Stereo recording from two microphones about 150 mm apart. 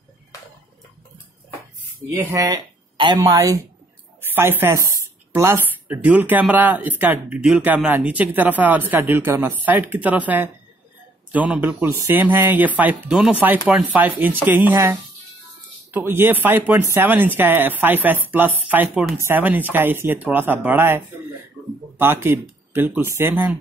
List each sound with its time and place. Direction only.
2.1 s a woman's voice: 20° right (ahead or behind)